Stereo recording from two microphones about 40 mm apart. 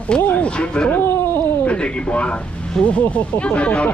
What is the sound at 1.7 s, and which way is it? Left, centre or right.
Speech, left.